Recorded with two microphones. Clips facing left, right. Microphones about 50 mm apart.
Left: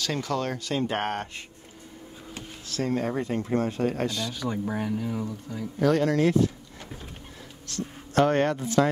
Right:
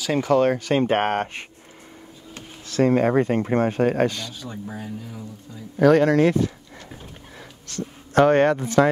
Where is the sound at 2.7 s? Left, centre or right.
Right.